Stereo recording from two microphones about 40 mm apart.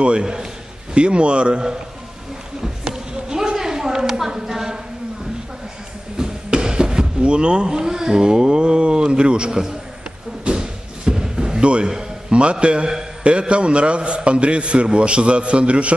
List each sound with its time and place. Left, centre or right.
0.0 s a man's voice: right
2.6 s a sound: centre
6.1 s speech: centre
9.5 s a man's voice: centre
10.5 s slam: centre
12.3 s a man's voice: right